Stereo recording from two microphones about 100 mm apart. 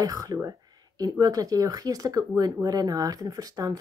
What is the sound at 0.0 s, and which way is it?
Speech, 40° right (ahead or behind).